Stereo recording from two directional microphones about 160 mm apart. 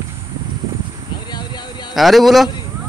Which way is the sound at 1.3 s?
25° left (ahead or behind).